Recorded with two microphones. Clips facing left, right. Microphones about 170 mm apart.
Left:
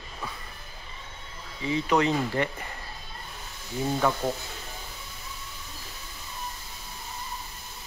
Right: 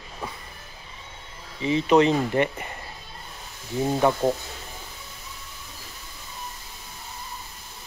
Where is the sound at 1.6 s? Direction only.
20° right (ahead or behind).